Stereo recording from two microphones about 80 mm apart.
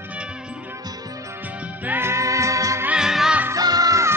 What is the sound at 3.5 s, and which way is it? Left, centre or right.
Music, right.